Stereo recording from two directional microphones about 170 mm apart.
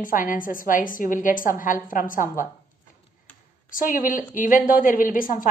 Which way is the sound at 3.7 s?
50° left (ahead or behind).